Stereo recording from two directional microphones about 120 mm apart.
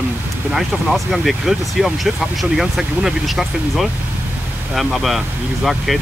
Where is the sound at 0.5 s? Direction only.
Centre (ahead or behind).